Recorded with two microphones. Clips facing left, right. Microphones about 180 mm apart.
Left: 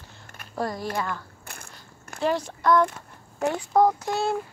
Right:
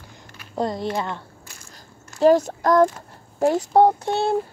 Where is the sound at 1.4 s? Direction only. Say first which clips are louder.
Left 1 dB; 60° left (ahead or behind).